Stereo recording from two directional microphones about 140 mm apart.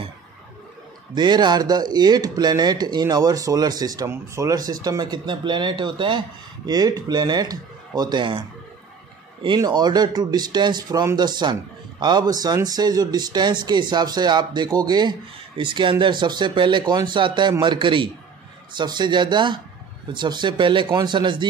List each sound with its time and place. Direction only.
1.1 s speech: 30° right (ahead or behind)